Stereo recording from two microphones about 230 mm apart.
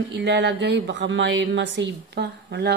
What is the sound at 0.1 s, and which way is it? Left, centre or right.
Speech, right.